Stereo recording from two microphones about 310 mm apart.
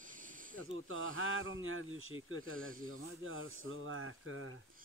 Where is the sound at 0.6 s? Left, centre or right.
Right.